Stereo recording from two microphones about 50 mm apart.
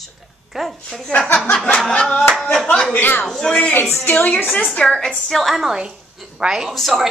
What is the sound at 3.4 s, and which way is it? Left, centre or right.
Speech, centre.